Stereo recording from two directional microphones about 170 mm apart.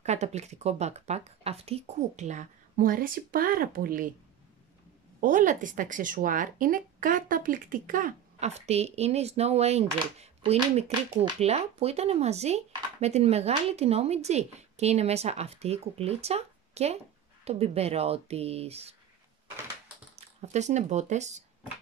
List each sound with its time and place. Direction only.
0.0 s speech: 40° right (ahead or behind)
5.2 s speech: 50° right (ahead or behind)
20.3 s speech: 40° right (ahead or behind)